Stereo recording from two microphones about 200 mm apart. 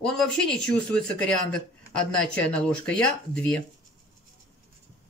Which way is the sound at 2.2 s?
5° left (ahead or behind).